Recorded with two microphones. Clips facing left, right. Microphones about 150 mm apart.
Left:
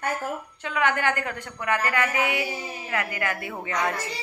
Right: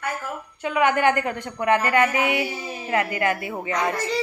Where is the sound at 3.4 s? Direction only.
5° right (ahead or behind).